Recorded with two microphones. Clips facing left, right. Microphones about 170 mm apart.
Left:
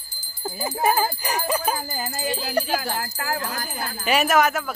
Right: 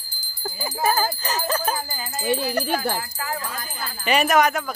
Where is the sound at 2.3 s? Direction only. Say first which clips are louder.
Right 3 dB; 60° right (ahead or behind).